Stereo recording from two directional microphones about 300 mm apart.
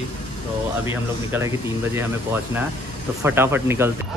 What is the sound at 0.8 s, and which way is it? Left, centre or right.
Speech, centre.